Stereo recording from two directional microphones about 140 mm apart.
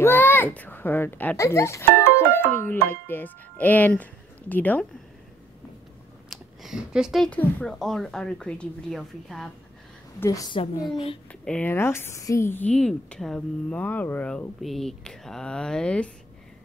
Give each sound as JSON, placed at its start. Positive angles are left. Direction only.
{"t": 0.0, "sound": "a child's voice", "side_deg": 15}
{"t": 6.3, "sound": "speech", "side_deg": -5}
{"t": 7.2, "sound": "a woman's voice", "side_deg": 5}
{"t": 10.2, "sound": "a woman's voice", "side_deg": 25}
{"t": 10.5, "sound": "a woman's voice", "side_deg": 35}
{"t": 11.4, "sound": "a woman's voice", "side_deg": 10}